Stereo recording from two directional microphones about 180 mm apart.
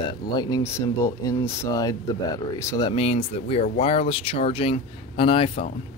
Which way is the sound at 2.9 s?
35° left (ahead or behind).